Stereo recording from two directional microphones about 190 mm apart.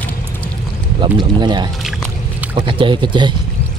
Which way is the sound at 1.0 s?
25° right (ahead or behind).